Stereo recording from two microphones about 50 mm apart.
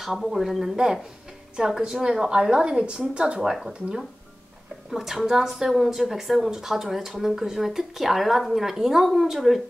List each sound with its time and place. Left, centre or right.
0.0 s a woman's voice: centre
3.4 s a woman's voice: centre